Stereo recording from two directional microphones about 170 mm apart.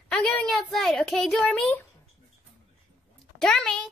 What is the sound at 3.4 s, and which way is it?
Child singing, 5° left (ahead or behind).